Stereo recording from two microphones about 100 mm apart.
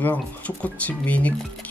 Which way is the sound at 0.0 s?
15° left (ahead or behind).